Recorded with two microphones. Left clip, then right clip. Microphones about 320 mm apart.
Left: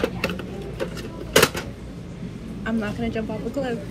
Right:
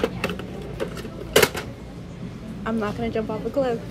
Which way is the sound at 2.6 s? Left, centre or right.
Right.